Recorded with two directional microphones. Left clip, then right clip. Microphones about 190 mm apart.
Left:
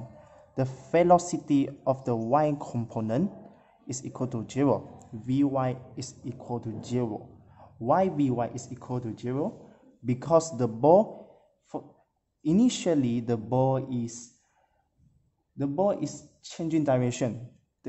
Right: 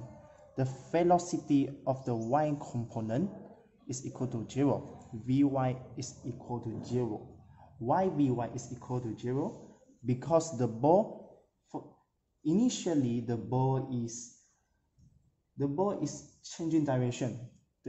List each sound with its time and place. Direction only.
0.6 s a man's voice: 25° left (ahead or behind)
11.7 s speech: 35° left (ahead or behind)
15.5 s speech: 35° left (ahead or behind)